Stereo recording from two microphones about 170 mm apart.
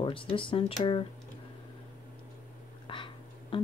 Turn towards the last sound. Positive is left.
turn(degrees=30)  # may be behind; listen again after turning